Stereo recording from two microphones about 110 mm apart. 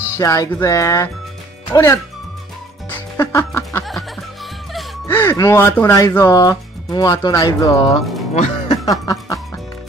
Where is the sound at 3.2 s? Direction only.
30° left (ahead or behind).